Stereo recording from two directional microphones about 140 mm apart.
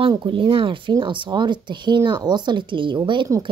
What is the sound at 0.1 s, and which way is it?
Speech, 35° right (ahead or behind).